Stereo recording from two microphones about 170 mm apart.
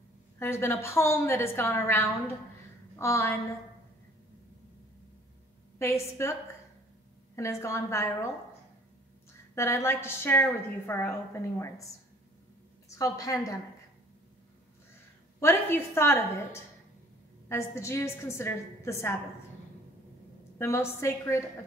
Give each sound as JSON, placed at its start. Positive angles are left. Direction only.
{"t": 0.4, "sound": "a woman's voice", "side_deg": 15}
{"t": 5.8, "sound": "a woman's voice", "side_deg": 15}
{"t": 7.3, "sound": "a woman's voice", "side_deg": 15}
{"t": 9.6, "sound": "a woman's voice", "side_deg": 15}
{"t": 12.9, "sound": "a woman's voice", "side_deg": 20}
{"t": 15.4, "sound": "a woman's voice", "side_deg": 15}
{"t": 20.5, "sound": "a woman's voice", "side_deg": 15}